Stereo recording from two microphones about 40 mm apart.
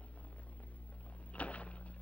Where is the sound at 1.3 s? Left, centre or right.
Left.